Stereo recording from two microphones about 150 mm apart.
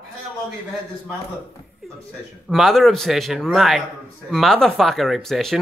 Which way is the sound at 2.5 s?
Centre (ahead or behind).